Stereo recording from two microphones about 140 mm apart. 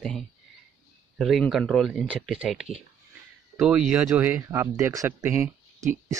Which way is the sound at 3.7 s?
5° right (ahead or behind).